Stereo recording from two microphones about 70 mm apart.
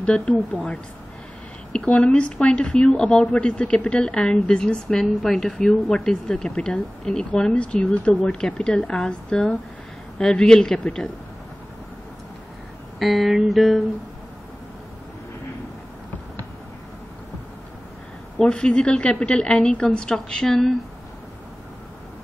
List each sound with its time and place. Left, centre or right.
0.0 s speech: centre
13.0 s music: centre
18.4 s speech: centre